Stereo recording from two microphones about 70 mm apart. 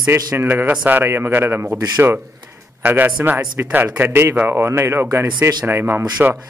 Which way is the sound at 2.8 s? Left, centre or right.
Right.